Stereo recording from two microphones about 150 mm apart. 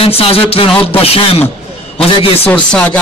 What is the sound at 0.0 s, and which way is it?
A man's voice, 40° left (ahead or behind).